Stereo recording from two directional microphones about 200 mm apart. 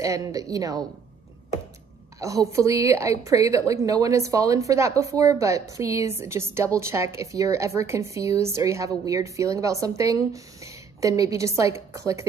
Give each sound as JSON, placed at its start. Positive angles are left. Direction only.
{"t": 0.0, "sound": "a woman's voice", "side_deg": -15}
{"t": 2.1, "sound": "a woman's voice", "side_deg": -15}